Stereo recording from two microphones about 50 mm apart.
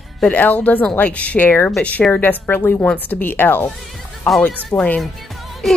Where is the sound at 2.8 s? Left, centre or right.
Left.